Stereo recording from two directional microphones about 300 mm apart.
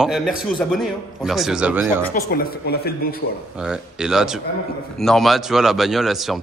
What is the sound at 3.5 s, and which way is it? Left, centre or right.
A man's voice, centre.